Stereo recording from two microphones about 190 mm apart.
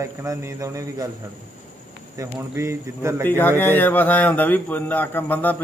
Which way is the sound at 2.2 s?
15° right (ahead or behind).